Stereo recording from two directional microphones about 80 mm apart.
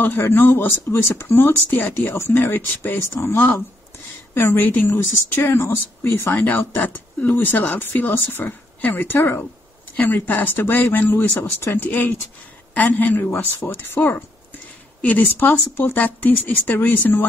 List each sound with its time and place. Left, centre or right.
0.0 s speech: left
4.8 s speech: left